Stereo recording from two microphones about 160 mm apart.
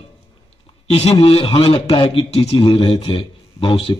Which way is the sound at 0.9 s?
35° left (ahead or behind).